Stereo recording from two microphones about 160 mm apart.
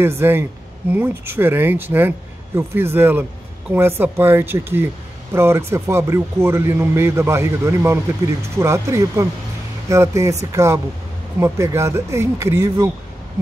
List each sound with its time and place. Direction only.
0.0 s speech: 15° right (ahead or behind)